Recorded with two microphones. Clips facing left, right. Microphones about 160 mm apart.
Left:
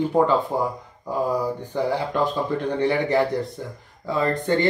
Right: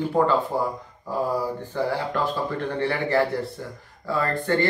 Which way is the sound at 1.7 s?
20° left (ahead or behind).